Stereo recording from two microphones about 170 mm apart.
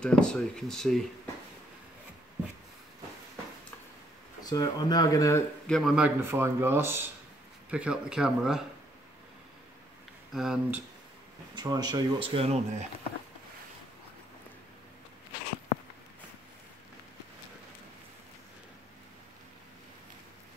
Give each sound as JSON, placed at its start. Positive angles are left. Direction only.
{"t": 0.0, "sound": "speech", "side_deg": 5}
{"t": 4.4, "sound": "speech", "side_deg": 25}
{"t": 5.7, "sound": "speech", "side_deg": 0}
{"t": 10.3, "sound": "speech", "side_deg": -5}
{"t": 11.5, "sound": "speech", "side_deg": -20}